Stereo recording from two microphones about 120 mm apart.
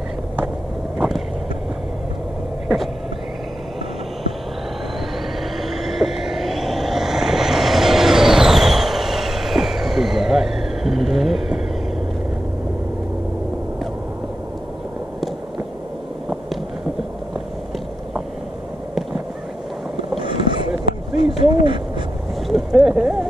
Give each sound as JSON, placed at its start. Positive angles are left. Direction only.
{"t": 0.9, "sound": "vehicle", "side_deg": -5}
{"t": 5.6, "sound": "vehicle", "side_deg": 0}
{"t": 20.2, "sound": "boat", "side_deg": -45}
{"t": 21.4, "sound": "hoot", "side_deg": -45}
{"t": 22.5, "sound": "a sound", "side_deg": -5}